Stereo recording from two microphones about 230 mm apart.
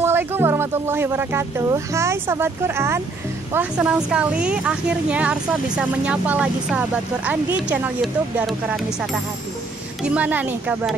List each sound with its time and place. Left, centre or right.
0.0 s a woman's voice: centre
10.0 s speech: centre